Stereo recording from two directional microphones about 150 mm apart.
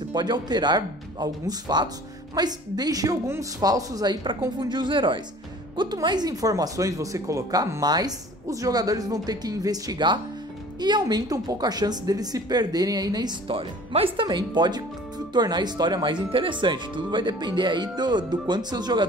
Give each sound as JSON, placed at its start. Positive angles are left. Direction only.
{"t": 0.1, "sound": "a woman's voice", "side_deg": -30}